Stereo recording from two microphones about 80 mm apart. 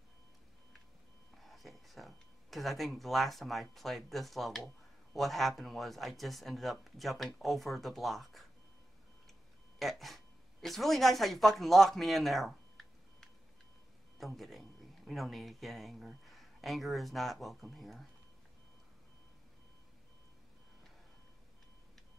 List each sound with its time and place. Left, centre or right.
1.3 s speech: centre
9.8 s speech: centre